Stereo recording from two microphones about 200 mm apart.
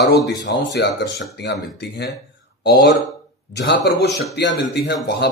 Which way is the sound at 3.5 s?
60° left (ahead or behind).